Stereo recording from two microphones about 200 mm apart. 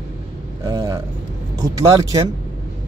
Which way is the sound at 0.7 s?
20° right (ahead or behind).